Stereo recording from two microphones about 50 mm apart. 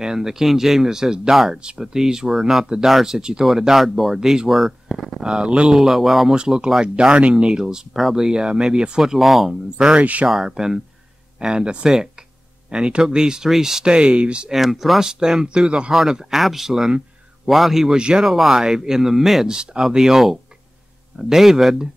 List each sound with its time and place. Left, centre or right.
0.0 s speech: centre
1.6 s speech: centre
5.2 s speech: centre
5.7 s speech: centre
6.3 s speech: centre
9.8 s speech: centre
14.5 s speech: centre
17.9 s speech: centre
18.2 s speech: centre
19.5 s speech: centre